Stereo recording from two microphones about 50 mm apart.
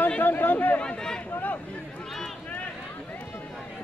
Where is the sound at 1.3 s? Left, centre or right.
Left.